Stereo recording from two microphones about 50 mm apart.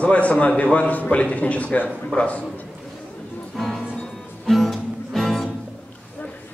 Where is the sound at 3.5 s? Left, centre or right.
Centre.